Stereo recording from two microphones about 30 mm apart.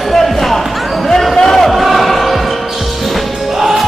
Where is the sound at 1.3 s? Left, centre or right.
Centre.